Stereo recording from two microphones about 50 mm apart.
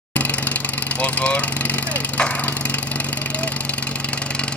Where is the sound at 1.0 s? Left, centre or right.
Left.